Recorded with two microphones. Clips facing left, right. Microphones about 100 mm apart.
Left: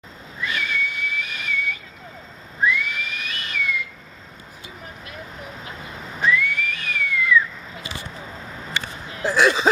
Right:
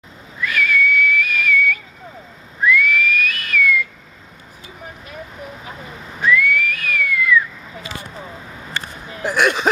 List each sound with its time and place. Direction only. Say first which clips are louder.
0.4 s whistling: right 7 dB; 25° left (ahead or behind)
6.2 s whistling: right 4 dB; 25° left (ahead or behind)
9.2 s a sound: even; 15° right (ahead or behind)